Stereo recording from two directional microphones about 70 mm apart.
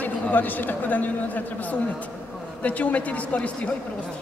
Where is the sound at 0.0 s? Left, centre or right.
Left.